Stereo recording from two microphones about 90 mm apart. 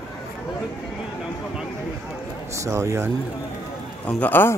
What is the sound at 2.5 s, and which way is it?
Speech, 35° right (ahead or behind).